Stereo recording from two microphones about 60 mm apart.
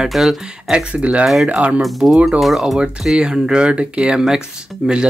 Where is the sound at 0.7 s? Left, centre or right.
Right.